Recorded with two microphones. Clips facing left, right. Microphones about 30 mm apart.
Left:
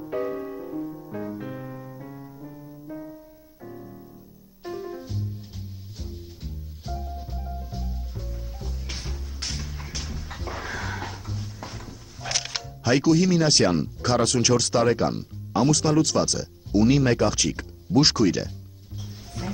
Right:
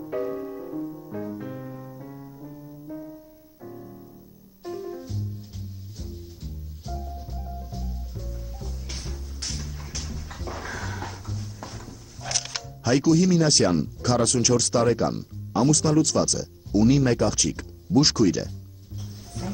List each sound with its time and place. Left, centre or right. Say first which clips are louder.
0.0 s music: even; centre